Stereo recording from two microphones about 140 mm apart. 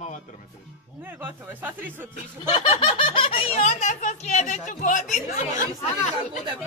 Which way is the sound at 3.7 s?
60° left (ahead or behind).